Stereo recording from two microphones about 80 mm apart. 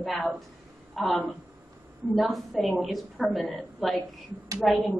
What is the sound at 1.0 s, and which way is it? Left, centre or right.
A woman's voice, centre.